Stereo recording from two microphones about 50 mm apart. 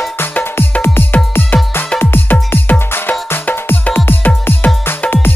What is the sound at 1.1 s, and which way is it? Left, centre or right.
Music, left.